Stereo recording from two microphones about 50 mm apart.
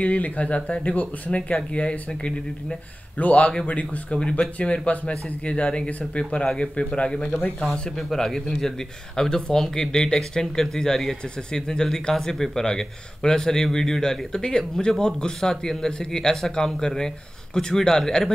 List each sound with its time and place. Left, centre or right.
0.0 s speech: left; by 18.3 s centre